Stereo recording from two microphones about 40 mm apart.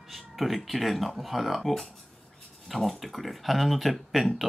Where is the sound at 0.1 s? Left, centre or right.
Centre.